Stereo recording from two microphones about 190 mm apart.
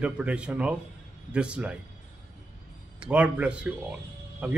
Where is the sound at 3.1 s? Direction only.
5° right (ahead or behind).